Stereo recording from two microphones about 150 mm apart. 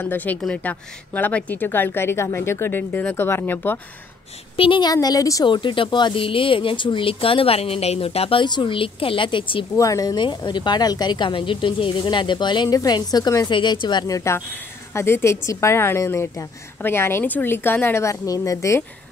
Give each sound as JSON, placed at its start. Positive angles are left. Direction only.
{"t": 0.0, "sound": "a woman's voice", "side_deg": 15}
{"t": 4.6, "sound": "speech", "side_deg": 35}
{"t": 9.8, "sound": "a woman's voice", "side_deg": 25}